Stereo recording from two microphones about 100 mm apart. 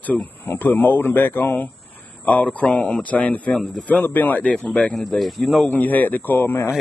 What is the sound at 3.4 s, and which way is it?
Speech, 5° left (ahead or behind).